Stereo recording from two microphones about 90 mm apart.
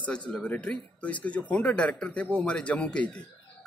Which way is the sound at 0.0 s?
15° left (ahead or behind).